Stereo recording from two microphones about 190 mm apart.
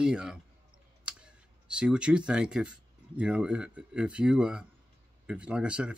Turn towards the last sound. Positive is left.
turn(degrees=-5)  # may be behind; listen again after turning